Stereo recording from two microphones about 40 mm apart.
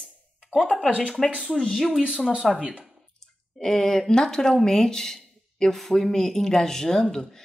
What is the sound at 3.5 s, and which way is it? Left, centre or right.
Speech, centre.